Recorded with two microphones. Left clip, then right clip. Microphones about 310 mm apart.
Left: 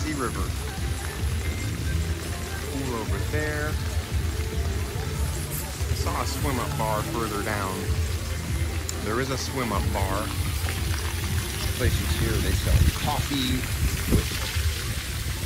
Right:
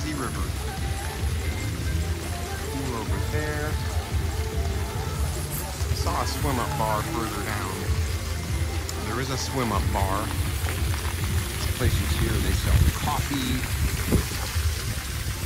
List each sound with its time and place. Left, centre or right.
6.0 s speech: centre
9.1 s speech: centre
14.1 s boat: right